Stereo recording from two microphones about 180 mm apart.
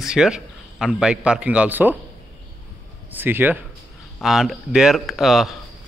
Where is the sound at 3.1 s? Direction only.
10° right (ahead or behind).